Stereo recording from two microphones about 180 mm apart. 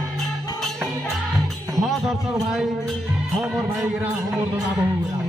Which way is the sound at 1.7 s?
Centre (ahead or behind).